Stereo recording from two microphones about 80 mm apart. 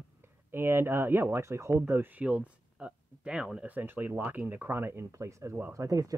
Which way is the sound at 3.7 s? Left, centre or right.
Right.